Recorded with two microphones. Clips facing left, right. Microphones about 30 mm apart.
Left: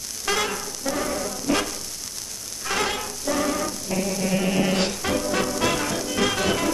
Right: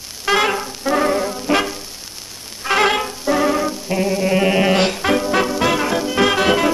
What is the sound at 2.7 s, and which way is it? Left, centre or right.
Music, right.